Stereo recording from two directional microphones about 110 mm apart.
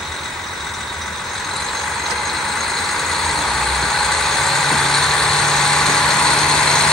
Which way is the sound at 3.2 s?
Centre (ahead or behind).